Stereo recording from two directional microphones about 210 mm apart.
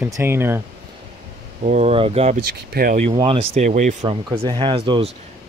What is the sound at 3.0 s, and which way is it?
Speech, 25° right (ahead or behind).